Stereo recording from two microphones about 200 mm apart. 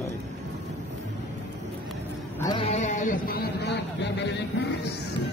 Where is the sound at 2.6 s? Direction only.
35° left (ahead or behind); by 4.3 s 60° left (ahead or behind).